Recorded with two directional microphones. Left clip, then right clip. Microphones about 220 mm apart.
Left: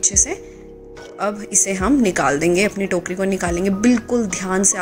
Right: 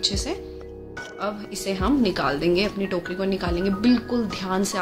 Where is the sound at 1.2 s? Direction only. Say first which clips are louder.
Left 10 dB; 20° left (ahead or behind).